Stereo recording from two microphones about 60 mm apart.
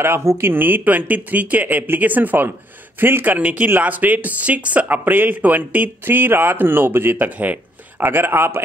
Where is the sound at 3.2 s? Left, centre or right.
Right.